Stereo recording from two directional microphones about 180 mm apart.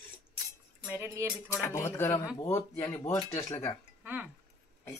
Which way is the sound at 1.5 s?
15° left (ahead or behind).